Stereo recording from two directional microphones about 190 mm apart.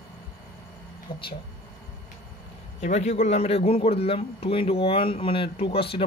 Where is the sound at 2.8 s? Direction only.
35° left (ahead or behind).